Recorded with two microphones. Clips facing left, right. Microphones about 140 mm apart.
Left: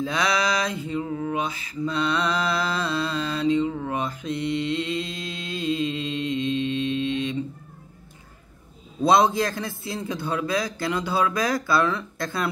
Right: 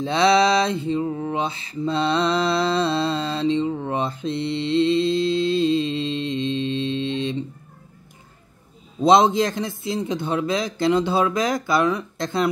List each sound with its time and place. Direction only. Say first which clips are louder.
0.0 s mantra: right 7 dB; 30° right (ahead or behind)
9.0 s a man's voice: right 3 dB; 20° right (ahead or behind)